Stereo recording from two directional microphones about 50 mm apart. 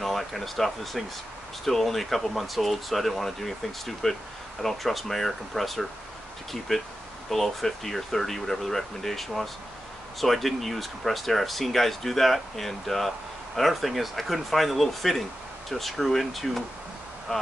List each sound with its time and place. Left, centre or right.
0.0 s speech: centre